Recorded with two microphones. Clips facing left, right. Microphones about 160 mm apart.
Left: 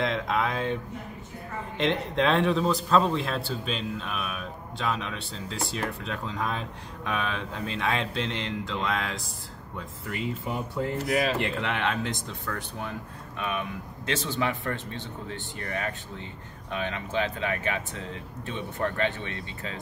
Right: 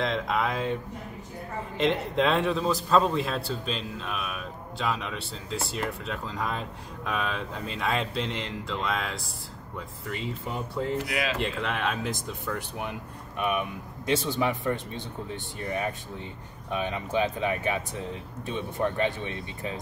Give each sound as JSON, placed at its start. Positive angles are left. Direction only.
{"t": 0.0, "sound": "a man's voice", "side_deg": 0}
{"t": 1.8, "sound": "a man's voice", "side_deg": 0}
{"t": 11.1, "sound": "speech", "side_deg": 35}
{"t": 11.3, "sound": "a man's voice", "side_deg": 0}